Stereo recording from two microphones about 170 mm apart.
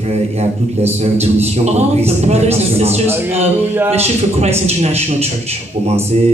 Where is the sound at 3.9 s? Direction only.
40° right (ahead or behind).